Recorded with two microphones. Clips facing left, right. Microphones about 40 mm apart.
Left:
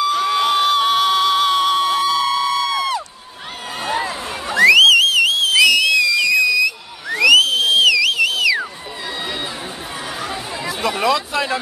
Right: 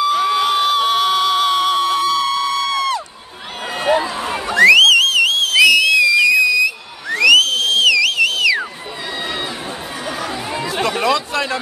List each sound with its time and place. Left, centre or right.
0.0 s crowd: centre
3.7 s a sound: centre
4.5 s whistle: centre
10.0 s chatter: centre